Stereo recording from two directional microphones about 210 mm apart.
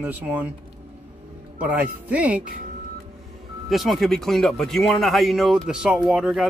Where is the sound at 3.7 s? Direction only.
Centre (ahead or behind).